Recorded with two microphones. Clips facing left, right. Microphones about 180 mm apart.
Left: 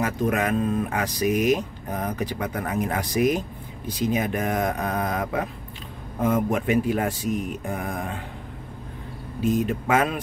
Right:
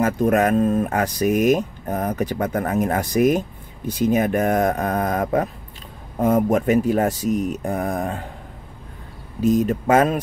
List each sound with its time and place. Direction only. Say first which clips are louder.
0.0 s speech: right 6 dB; 45° right (ahead or behind)
9.4 s speech: right 5 dB; 40° right (ahead or behind)